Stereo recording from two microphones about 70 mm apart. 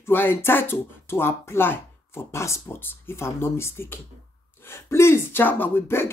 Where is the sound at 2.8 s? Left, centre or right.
Left.